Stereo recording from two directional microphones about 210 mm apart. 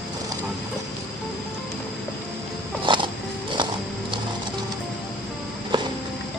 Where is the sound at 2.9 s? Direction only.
25° right (ahead or behind).